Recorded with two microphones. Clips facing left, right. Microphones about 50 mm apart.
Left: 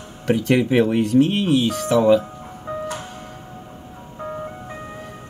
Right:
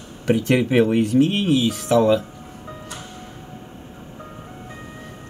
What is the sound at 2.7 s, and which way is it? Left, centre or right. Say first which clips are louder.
Music: left 10 dB; left.